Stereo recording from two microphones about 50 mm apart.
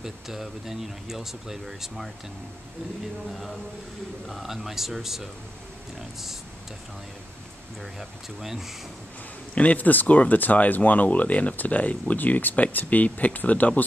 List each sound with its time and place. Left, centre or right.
0.0 s speech: centre
4.3 s speech: centre
7.8 s speech: centre
9.6 s speech: left